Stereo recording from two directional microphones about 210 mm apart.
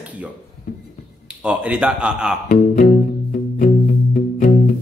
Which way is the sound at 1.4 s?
5° right (ahead or behind).